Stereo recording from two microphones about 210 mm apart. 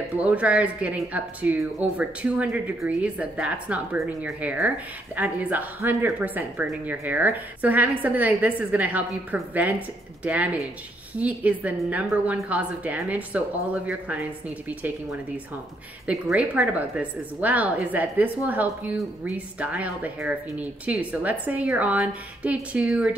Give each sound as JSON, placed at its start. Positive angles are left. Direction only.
{"t": 0.2, "sound": "speech", "side_deg": -5}